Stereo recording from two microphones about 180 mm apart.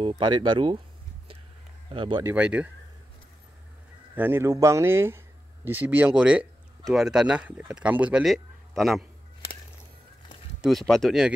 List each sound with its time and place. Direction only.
0.0 s speech: 30° right (ahead or behind)
1.9 s speech: 25° right (ahead or behind)
2.2 s speech: 5° right (ahead or behind)
4.1 s speech: 10° right (ahead or behind)
10.6 s speech: centre (ahead or behind)